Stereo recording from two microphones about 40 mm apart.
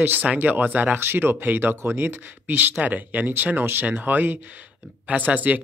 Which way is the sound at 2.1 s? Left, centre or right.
Right.